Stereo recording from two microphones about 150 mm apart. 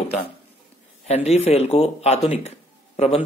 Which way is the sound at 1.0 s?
45° left (ahead or behind).